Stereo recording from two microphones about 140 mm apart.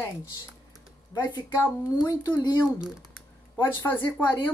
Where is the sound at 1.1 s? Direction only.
30° left (ahead or behind).